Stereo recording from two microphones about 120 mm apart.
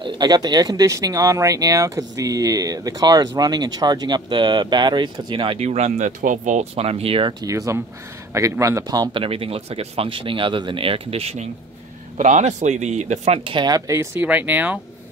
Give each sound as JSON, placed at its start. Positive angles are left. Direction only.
{"t": 0.0, "sound": "speech", "side_deg": -35}
{"t": 5.6, "sound": "speech", "side_deg": -65}
{"t": 7.4, "sound": "speech", "side_deg": -25}
{"t": 9.1, "sound": "speech", "side_deg": -50}
{"t": 12.2, "sound": "speech", "side_deg": -80}
{"t": 13.4, "sound": "speech", "side_deg": -40}
{"t": 13.9, "sound": "speech", "side_deg": -15}